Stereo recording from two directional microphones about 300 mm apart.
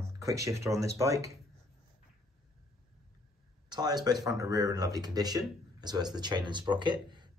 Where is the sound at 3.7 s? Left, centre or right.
Centre.